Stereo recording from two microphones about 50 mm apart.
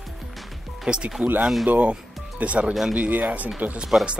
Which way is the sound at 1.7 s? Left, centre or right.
Right.